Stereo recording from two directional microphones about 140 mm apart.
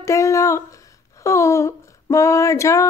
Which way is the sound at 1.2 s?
20° left (ahead or behind).